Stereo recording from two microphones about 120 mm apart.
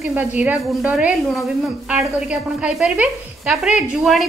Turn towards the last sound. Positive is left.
turn(degrees=0)  # may be behind; listen again after turning